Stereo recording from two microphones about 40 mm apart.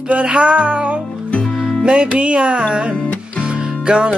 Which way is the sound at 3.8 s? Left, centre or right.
Right.